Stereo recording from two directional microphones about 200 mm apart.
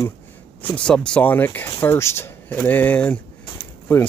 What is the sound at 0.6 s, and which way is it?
Speech, 5° left (ahead or behind).